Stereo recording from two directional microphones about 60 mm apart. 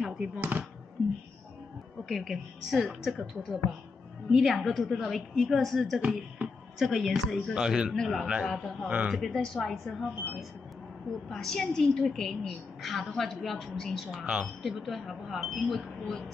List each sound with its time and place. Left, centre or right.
0.0 s a sound: centre
0.4 s speech: right
2.0 s a woman's voice: centre
5.9 s speech: centre
6.8 s a woman's voice: centre
7.9 s a woman's voice: centre
8.8 s speech: right
9.3 s a woman's voice: centre
11.2 s a woman's voice: centre
14.1 s speech: centre
14.6 s a woman's voice: centre